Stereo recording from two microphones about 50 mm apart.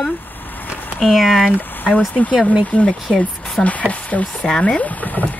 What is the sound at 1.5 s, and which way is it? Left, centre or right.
Speech, left.